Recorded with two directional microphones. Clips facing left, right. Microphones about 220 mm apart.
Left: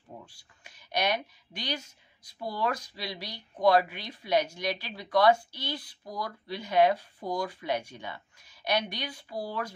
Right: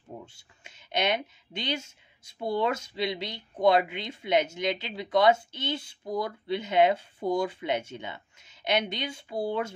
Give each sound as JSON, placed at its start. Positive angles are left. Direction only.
{"t": 0.2, "sound": "a woman's voice", "side_deg": -25}